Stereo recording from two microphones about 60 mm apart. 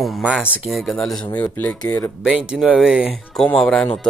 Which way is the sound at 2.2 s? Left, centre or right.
Centre.